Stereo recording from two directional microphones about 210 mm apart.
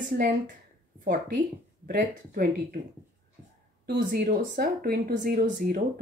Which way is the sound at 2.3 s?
45° right (ahead or behind).